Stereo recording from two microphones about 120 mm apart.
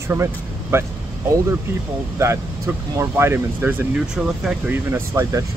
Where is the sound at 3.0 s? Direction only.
20° right (ahead or behind).